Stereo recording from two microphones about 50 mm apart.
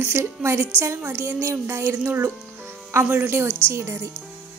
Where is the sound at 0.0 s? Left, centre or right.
Right.